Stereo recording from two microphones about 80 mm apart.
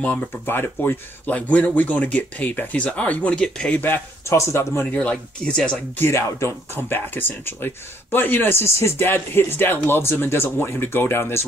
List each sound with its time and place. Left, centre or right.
0.0 s speech: centre
3.8 s speech: left
4.3 s speech: left
4.9 s speech: centre
5.9 s speech: left